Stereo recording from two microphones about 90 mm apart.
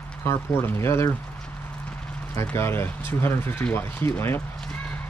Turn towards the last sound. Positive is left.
turn(degrees=10)  # may be behind; listen again after turning